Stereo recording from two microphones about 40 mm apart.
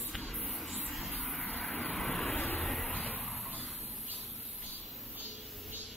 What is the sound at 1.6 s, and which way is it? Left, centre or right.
Vehicle, centre.